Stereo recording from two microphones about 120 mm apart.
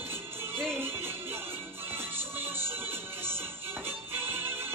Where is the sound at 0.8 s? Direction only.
20° right (ahead or behind).